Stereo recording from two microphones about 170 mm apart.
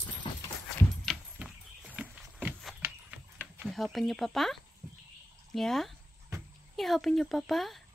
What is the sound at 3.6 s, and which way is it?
Speech, centre (ahead or behind).